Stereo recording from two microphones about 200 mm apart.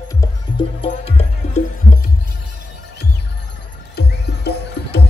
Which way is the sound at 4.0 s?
55° left (ahead or behind).